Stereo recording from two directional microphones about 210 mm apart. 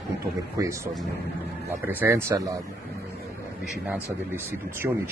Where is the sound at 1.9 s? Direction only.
10° right (ahead or behind).